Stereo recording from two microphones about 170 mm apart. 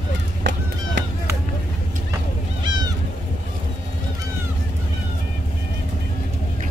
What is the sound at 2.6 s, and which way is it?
Cat, 25° right (ahead or behind).